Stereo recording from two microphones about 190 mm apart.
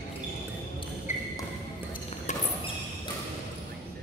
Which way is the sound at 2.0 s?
30° left (ahead or behind).